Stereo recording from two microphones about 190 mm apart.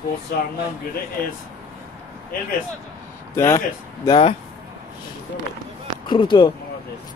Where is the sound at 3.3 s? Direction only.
15° left (ahead or behind).